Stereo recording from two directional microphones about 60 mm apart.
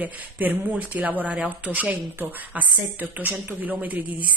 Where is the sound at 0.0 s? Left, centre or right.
Right.